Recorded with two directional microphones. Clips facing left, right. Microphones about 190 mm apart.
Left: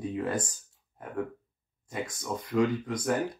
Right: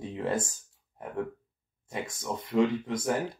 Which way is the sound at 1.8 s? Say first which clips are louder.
Even; 25° right (ahead or behind).